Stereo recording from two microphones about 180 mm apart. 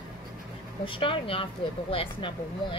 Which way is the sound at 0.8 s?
30° left (ahead or behind).